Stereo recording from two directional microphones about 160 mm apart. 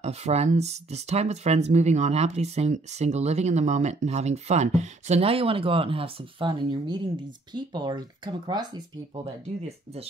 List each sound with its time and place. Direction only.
0.0 s speech: 45° right (ahead or behind); by 8.8 s 25° right (ahead or behind)